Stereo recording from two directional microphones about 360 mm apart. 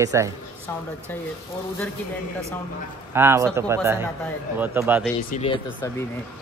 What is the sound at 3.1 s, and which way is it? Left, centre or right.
Speech, centre.